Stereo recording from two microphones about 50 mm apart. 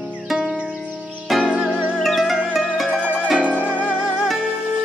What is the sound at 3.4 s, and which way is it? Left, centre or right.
Music, right.